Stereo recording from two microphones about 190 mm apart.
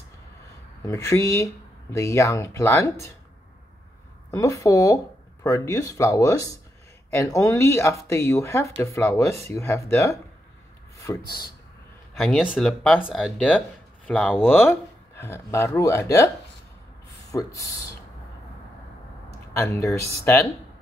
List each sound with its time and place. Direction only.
0.8 s speech: 15° left (ahead or behind)
4.3 s speech: 15° left (ahead or behind)
12.2 s speech: centre (ahead or behind)
14.4 s speech: 10° left (ahead or behind)
17.3 s speech: 15° left (ahead or behind)
19.5 s speech: 15° left (ahead or behind)